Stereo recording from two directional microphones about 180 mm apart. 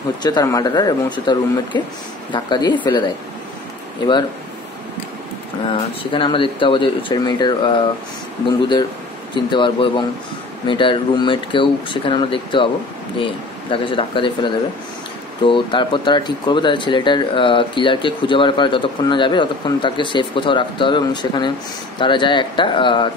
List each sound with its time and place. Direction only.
0.2 s speech: 20° left (ahead or behind)
5.7 s speech: 30° left (ahead or behind)
9.3 s speech: 25° left (ahead or behind)